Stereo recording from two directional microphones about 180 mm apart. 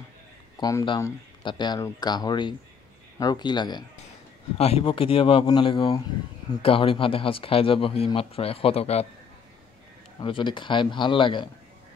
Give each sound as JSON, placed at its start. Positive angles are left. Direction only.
{"t": 0.6, "sound": "speech", "side_deg": 20}
{"t": 10.2, "sound": "speech", "side_deg": 25}